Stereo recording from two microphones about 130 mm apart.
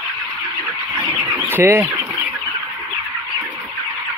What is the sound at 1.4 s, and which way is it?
Speech, 15° right (ahead or behind).